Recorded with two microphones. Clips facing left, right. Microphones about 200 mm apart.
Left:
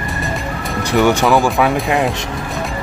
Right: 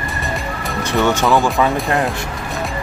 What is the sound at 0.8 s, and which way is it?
Speech, 15° left (ahead or behind).